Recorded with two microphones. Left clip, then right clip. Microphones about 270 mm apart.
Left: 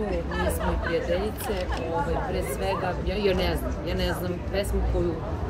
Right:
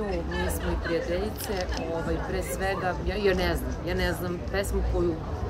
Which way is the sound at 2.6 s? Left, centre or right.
Right.